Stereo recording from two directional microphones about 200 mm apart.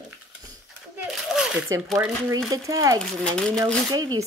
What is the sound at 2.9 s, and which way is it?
Speech, 5° left (ahead or behind).